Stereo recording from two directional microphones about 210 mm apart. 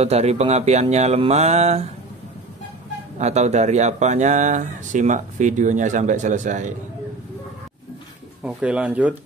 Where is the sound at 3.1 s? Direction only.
35° right (ahead or behind).